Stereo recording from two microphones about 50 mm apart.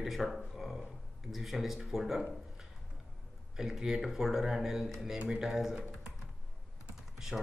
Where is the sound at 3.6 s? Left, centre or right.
Centre.